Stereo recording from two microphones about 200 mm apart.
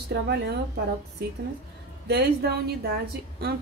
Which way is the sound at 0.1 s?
55° right (ahead or behind).